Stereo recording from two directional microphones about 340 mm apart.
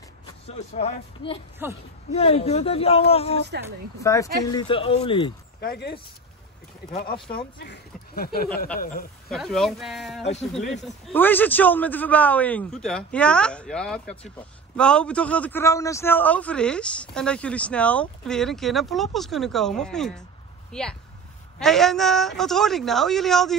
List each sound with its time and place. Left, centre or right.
0.5 s speech: centre
1.6 s speech: centre
2.1 s speech: centre
5.6 s speech: left
7.5 s speech: left
9.3 s a man's voice: centre